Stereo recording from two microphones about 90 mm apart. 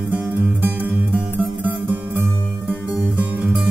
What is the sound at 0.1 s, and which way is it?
Music, 20° right (ahead or behind).